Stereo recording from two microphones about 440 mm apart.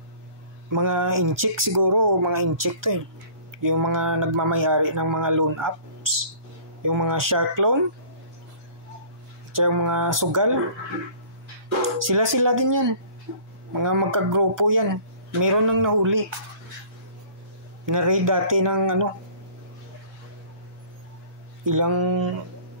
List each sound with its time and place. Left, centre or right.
0.7 s speech: right
3.5 s a sound: right
3.9 s speech: right
9.5 s speech: right
12.0 s speech: right
17.8 s speech: right
21.6 s speech: right